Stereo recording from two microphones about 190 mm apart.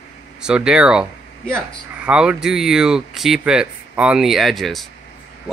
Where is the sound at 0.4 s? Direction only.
5° right (ahead or behind).